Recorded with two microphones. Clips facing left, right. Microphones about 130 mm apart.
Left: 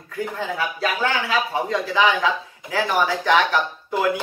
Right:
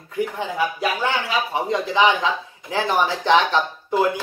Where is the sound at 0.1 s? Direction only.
15° right (ahead or behind).